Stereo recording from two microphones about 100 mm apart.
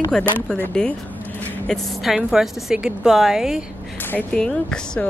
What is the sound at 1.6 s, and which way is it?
Speech, centre (ahead or behind).